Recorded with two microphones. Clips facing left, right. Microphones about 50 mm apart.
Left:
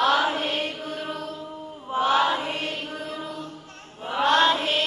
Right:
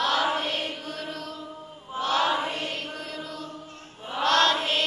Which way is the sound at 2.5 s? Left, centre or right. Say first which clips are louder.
Left 2 dB; centre.